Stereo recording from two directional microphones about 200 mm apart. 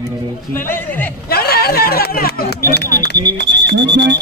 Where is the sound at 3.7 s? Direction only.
60° right (ahead or behind).